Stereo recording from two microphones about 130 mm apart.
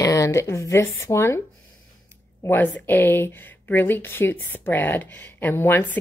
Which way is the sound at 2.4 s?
15° left (ahead or behind).